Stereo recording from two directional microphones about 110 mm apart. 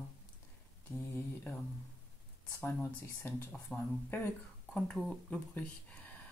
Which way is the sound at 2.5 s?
20° left (ahead or behind).